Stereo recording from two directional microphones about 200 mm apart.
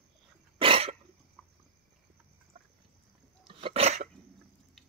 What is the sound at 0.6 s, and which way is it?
Cough, 25° right (ahead or behind).